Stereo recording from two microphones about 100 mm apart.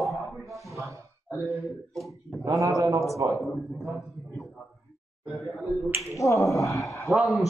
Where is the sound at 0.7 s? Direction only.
30° right (ahead or behind).